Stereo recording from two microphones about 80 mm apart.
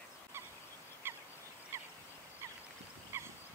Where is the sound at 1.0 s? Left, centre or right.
Right.